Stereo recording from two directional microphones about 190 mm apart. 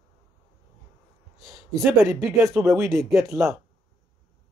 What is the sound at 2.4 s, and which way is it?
Speech, 15° right (ahead or behind).